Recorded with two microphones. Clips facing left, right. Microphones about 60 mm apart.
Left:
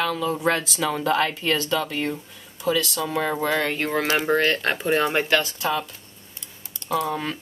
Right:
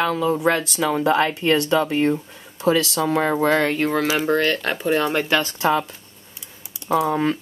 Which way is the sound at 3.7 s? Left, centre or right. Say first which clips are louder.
Right 4 dB; centre.